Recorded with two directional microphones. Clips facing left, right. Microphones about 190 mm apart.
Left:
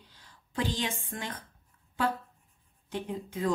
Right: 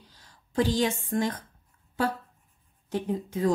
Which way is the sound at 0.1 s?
40° right (ahead or behind).